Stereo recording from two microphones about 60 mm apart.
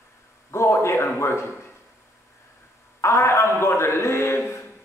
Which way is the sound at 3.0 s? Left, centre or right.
Left.